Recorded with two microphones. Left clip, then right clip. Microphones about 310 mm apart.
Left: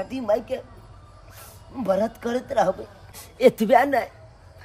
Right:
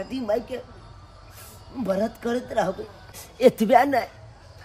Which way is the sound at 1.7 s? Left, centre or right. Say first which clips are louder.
Left 3 dB; centre.